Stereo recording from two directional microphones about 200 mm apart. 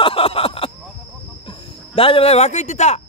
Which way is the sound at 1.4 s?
25° left (ahead or behind).